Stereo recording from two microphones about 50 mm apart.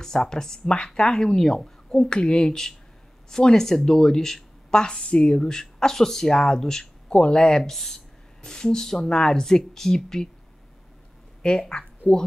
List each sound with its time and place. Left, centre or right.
0.0 s speech: centre
11.4 s speech: centre